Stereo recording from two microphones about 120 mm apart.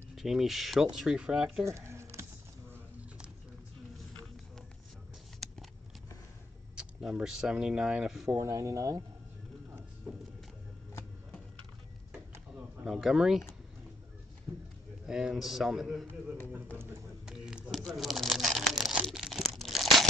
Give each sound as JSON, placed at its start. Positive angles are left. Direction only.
{"t": 0.1, "sound": "a man's voice", "side_deg": 0}
{"t": 1.6, "sound": "a sound", "side_deg": -25}
{"t": 5.4, "sound": "a sound", "side_deg": 5}
{"t": 6.7, "sound": "speech", "side_deg": -5}
{"t": 8.3, "sound": "speech", "side_deg": -25}
{"t": 12.8, "sound": "a man's voice", "side_deg": 0}
{"t": 14.5, "sound": "a sound", "side_deg": -20}
{"t": 15.0, "sound": "a man's voice", "side_deg": -5}
{"t": 17.3, "sound": "tearing", "side_deg": -5}